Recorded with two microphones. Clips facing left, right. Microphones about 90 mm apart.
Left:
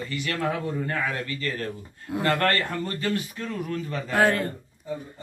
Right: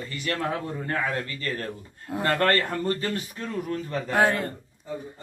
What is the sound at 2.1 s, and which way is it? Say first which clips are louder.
A man's voice: right 1 dB; 35° right (ahead or behind).